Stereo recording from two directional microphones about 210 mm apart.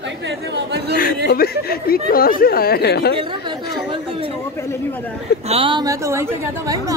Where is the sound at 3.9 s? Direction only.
25° right (ahead or behind).